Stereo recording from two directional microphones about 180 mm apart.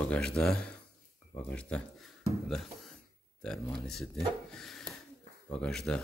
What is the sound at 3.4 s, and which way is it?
Speech, 5° left (ahead or behind).